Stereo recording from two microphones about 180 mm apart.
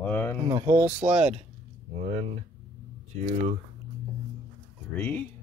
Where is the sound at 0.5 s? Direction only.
15° right (ahead or behind).